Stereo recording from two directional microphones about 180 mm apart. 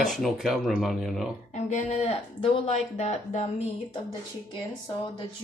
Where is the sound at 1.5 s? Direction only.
40° left (ahead or behind).